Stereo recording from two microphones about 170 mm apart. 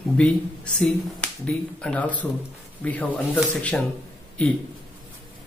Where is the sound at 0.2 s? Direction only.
5° left (ahead or behind).